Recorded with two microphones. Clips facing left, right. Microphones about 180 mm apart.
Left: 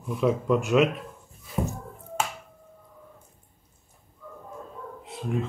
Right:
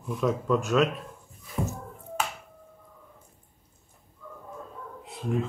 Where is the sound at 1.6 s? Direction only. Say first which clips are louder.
Left 2 dB; 25° left (ahead or behind).